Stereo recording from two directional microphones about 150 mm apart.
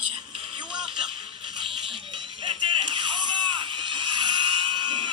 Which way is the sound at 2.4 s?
35° right (ahead or behind).